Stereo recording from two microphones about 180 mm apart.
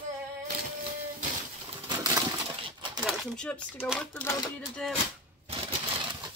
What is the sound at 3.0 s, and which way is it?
Speech, centre (ahead or behind).